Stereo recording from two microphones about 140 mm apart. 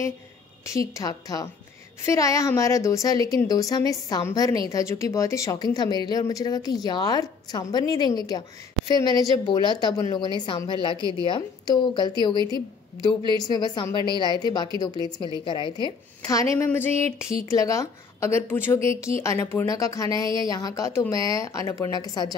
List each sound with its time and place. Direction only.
0.7 s a woman's voice: 25° left (ahead or behind)
13.4 s a woman's voice: 30° left (ahead or behind)
16.3 s a woman's voice: 20° left (ahead or behind)